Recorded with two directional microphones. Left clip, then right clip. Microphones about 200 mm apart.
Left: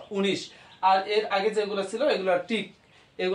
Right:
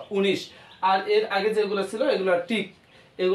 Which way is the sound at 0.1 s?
15° right (ahead or behind).